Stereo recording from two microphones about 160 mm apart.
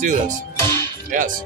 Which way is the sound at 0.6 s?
15° left (ahead or behind).